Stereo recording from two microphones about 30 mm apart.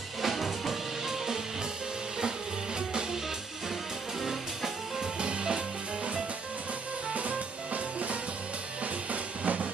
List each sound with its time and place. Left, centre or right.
0.2 s music: centre
2.9 s music: right
5.2 s music: right
7.2 s drum kit: right
9.1 s drum: right